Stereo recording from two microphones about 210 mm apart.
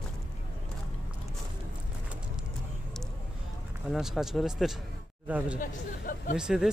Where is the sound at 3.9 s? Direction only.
Centre (ahead or behind).